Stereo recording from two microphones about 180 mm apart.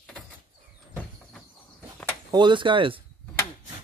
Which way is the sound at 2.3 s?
25° right (ahead or behind).